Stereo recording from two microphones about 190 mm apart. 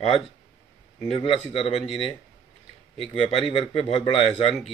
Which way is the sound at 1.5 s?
30° left (ahead or behind).